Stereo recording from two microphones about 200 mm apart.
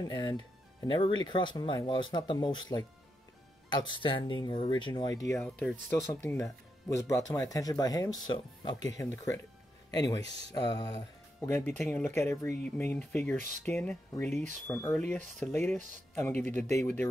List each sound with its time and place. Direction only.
0.0 s speech: 20° left (ahead or behind)
3.9 s speech: 25° left (ahead or behind); by 13.4 s 10° left (ahead or behind)
13.4 s speech: 40° right (ahead or behind)
13.7 s speech: 10° left (ahead or behind)